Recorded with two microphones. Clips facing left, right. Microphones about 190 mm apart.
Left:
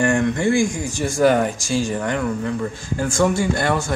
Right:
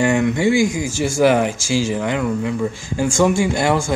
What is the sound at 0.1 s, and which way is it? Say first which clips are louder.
Speech: right 2 dB; 10° right (ahead or behind).